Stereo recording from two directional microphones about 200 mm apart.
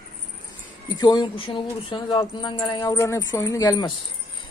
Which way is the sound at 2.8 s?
15° left (ahead or behind).